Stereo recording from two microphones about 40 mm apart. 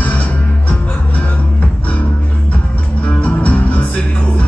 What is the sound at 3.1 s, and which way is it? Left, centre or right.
Music, left.